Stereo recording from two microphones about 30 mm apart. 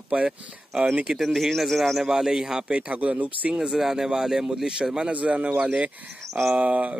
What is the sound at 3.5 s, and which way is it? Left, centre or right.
Speech, right.